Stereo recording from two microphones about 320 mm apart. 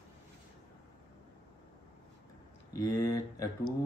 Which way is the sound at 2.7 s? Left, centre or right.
Centre.